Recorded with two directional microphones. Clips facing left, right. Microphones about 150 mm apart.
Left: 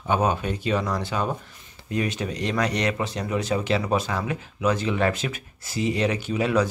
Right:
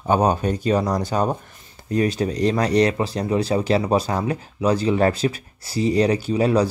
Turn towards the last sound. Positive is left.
turn(degrees=-35)  # may be behind; listen again after turning